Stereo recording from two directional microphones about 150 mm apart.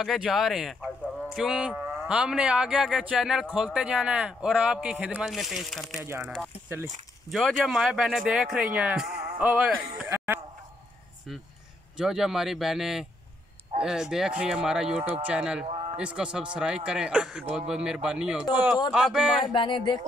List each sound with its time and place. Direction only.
0.0 s speech: centre (ahead or behind)
7.2 s speech: centre (ahead or behind)
12.0 s a man's voice: 5° right (ahead or behind)
15.6 s a sound: 40° right (ahead or behind)
16.0 s a man's voice: 5° right (ahead or behind)
19.4 s a sound: 35° left (ahead or behind)